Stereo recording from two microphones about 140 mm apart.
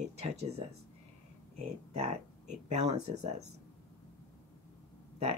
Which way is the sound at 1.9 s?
50° right (ahead or behind).